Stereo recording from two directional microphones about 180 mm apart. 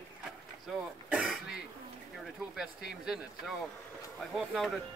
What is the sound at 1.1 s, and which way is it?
Throat clearing, centre (ahead or behind).